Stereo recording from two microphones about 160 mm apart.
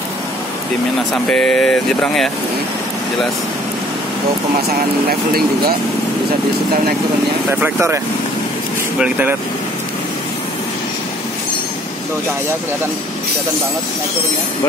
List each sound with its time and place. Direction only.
1.1 s speech: 5° left (ahead or behind)
7.6 s speech: 15° right (ahead or behind)
9.0 s speech: 10° right (ahead or behind)